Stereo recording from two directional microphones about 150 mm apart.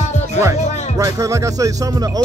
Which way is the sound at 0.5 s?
50° left (ahead or behind).